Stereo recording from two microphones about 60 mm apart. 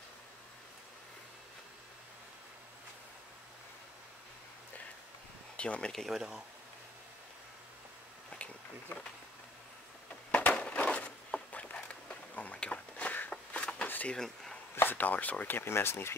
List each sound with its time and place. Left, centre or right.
5.6 s speech: centre
6.1 s speech: centre
10.3 s a sound: left
12.9 s walk: left
13.5 s a sound: left
13.8 s vehicle: left
14.1 s speech: centre
14.8 s speech: left